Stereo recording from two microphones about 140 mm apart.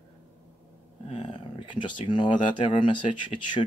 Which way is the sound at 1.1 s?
40° left (ahead or behind).